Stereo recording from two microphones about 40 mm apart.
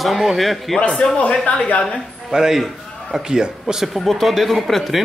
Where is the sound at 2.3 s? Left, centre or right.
Centre.